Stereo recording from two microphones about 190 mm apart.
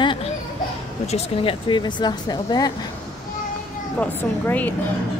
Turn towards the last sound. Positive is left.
turn(degrees=10)  # may be behind; listen again after turning